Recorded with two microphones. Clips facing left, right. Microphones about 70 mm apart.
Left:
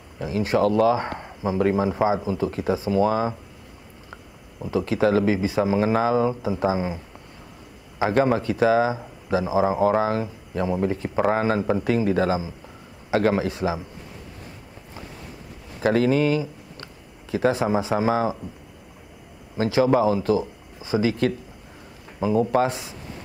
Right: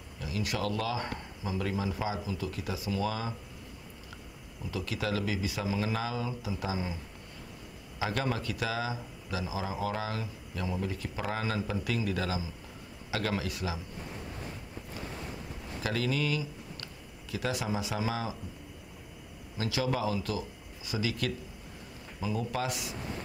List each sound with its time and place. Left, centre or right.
0.2 s speech: left
4.6 s speech: left
8.0 s speech: left
15.8 s speech: left
19.5 s speech: left